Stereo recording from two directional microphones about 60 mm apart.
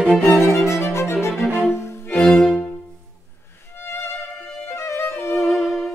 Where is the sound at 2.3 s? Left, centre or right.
Centre.